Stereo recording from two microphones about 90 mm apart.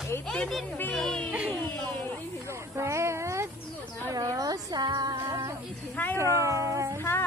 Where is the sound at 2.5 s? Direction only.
30° right (ahead or behind).